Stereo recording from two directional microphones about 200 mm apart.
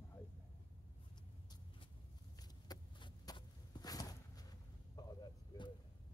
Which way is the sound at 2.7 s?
20° left (ahead or behind).